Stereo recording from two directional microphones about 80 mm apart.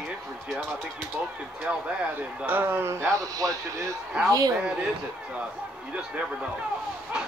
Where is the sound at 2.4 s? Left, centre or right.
Right.